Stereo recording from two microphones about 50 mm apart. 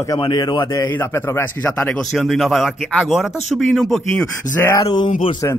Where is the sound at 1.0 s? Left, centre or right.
Left.